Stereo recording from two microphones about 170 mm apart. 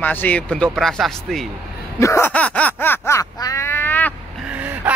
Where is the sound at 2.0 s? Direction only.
15° left (ahead or behind).